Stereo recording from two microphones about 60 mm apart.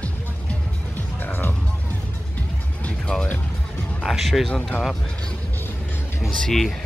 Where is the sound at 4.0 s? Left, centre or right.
Centre.